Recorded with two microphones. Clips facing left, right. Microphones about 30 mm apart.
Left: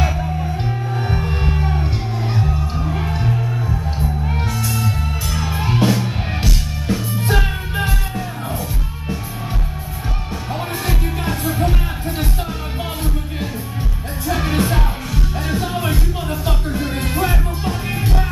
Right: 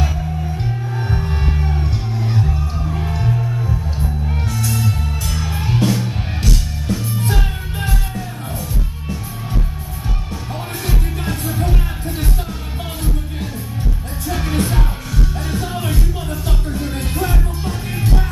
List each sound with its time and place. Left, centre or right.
1.1 s music: centre
10.9 s music: centre
14.2 s music: centre